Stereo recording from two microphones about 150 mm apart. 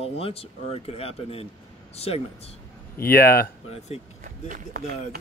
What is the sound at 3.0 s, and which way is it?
Speech, 90° left.